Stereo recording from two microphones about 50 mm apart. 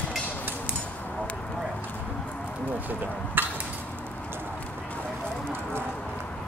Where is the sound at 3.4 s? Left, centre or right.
Right.